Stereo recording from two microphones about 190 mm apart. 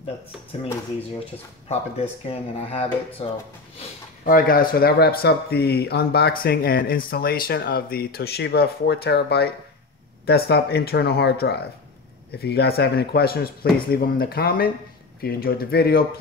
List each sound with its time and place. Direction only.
1.7 s speech: 30° left (ahead or behind)
4.2 s speech: 50° left (ahead or behind)